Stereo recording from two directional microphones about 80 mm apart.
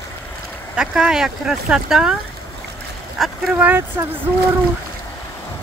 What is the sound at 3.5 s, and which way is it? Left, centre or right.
Speech, centre.